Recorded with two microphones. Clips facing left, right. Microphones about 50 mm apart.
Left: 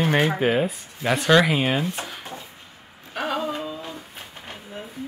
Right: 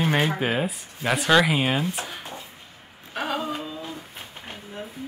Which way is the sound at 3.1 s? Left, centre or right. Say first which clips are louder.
Left 2 dB; centre.